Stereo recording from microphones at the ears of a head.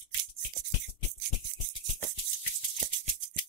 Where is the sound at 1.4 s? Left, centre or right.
Right.